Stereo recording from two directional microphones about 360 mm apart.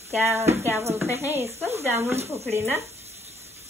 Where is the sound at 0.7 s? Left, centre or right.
Centre.